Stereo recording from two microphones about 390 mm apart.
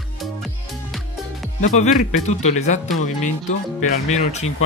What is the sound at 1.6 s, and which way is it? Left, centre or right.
Speech, centre.